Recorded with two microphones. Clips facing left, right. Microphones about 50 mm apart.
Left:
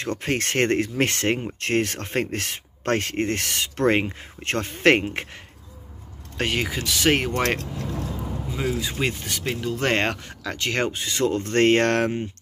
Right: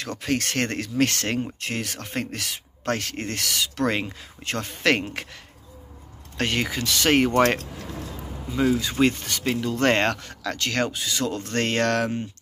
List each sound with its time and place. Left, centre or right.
0.0 s speech: left
1.6 s speech: left
6.3 s speech: centre
8.5 s speech: centre; by 12.3 s left